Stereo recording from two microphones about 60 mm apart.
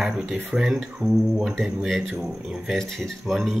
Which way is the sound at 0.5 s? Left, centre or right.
Right.